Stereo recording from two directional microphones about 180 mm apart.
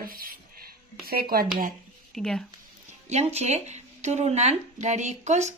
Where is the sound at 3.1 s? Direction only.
35° right (ahead or behind).